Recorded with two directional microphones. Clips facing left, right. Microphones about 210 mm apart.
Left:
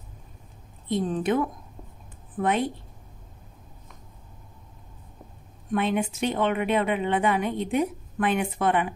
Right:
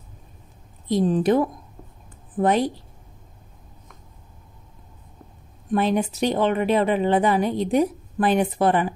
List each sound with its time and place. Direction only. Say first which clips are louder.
0.8 s a woman's voice: right 6 dB; 35° right (ahead or behind)
5.7 s a woman's voice: right 4 dB; 35° right (ahead or behind)